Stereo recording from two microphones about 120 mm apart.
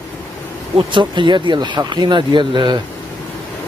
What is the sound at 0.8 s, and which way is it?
Speech, 40° right (ahead or behind).